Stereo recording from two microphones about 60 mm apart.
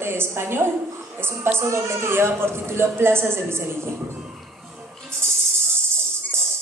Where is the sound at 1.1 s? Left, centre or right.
Right.